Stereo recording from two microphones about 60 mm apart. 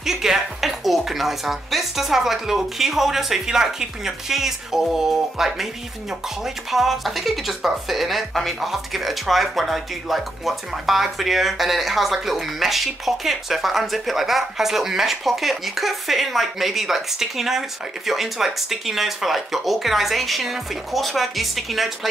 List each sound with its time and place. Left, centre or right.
0.0 s speech: centre